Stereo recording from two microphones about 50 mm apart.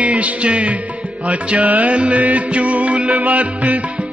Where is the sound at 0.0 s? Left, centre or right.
Right.